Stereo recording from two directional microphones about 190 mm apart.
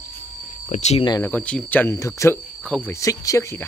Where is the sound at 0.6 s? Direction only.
40° left (ahead or behind).